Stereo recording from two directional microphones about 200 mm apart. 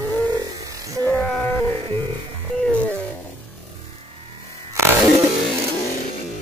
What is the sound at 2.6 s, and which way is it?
Music, 5° left (ahead or behind).